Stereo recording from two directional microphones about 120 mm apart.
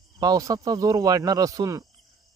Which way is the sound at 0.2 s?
30° right (ahead or behind).